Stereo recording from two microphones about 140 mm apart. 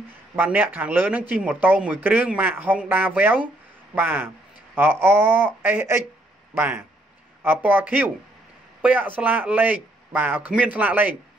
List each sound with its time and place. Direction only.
0.4 s a man's voice: 15° right (ahead or behind)